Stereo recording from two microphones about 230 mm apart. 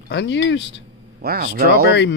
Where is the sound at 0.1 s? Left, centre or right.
Left.